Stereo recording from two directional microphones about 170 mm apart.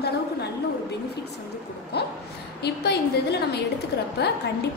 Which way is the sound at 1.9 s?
75° left (ahead or behind).